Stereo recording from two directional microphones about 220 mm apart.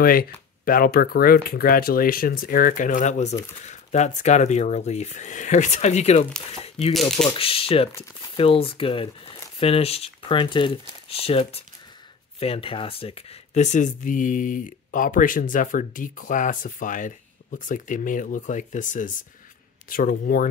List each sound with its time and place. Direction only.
0.0 s speech: 40° left (ahead or behind)
7.3 s speech: 25° left (ahead or behind)